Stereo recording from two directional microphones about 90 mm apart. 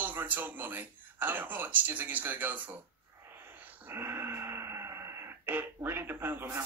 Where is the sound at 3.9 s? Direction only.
25° right (ahead or behind).